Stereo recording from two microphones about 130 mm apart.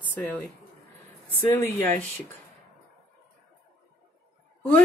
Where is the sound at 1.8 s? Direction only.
20° left (ahead or behind).